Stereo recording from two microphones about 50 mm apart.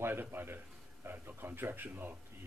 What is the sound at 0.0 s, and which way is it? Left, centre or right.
Speech, right.